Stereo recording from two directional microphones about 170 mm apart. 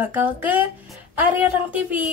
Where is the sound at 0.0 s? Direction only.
10° right (ahead or behind).